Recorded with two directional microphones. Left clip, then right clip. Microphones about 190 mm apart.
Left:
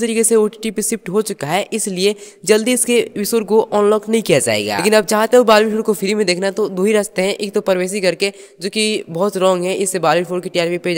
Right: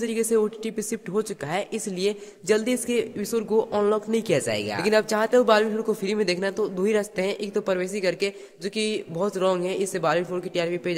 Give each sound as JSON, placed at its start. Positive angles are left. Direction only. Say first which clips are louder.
{"t": 0.0, "sound": "speech", "louder": "left 9 dB", "side_deg": 45}